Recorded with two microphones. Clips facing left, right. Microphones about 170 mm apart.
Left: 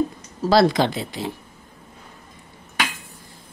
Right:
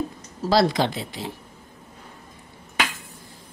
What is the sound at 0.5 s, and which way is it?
Speech, 55° left (ahead or behind).